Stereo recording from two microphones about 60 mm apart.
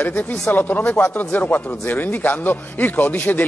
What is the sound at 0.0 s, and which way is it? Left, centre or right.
Speech, left.